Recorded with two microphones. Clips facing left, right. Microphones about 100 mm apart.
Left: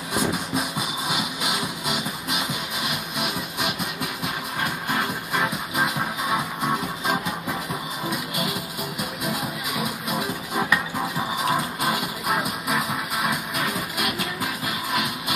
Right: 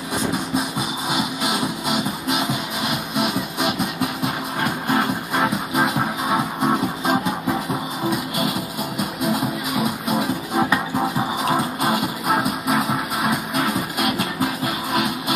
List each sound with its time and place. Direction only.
1.1 s music: 40° right (ahead or behind)
4.9 s music: 40° right (ahead or behind)
10.0 s music: 30° right (ahead or behind)
11.5 s music: 40° right (ahead or behind)